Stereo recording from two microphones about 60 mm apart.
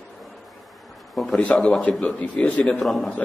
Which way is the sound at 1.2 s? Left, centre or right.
Centre.